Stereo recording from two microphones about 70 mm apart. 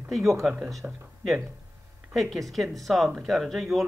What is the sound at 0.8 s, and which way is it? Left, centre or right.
Speech, right.